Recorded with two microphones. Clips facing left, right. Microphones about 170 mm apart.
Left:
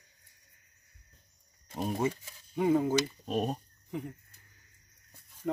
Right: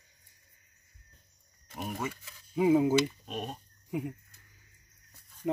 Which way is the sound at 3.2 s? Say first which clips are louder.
Left 7 dB; 40° left (ahead or behind).